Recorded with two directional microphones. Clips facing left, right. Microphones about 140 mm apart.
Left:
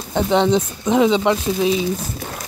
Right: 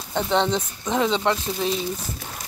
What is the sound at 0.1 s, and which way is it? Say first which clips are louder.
Speech: left 6 dB; 10° left (ahead or behind).